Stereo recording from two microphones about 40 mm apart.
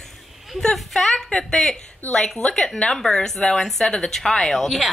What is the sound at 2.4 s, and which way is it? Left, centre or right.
Speech, left.